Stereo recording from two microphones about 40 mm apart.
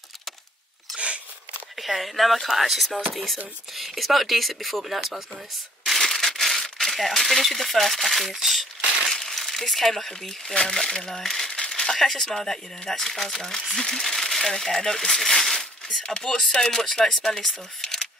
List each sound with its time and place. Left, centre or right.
0.9 s a sound: right
1.8 s speech: centre
5.9 s crumpling: centre
9.0 s crumpling: centre
9.3 s speech: centre
11.5 s a sound: left
11.8 s speech: centre
16.0 s speech: left